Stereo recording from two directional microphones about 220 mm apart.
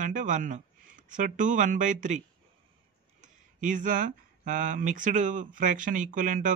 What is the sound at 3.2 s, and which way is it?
Speech, 35° right (ahead or behind).